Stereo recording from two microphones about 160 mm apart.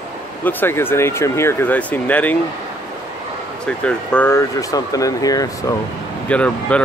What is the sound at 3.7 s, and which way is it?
Speech, 5° left (ahead or behind).